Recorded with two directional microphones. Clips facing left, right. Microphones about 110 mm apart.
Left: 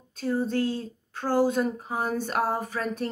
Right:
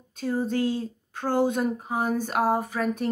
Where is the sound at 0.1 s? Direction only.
15° right (ahead or behind).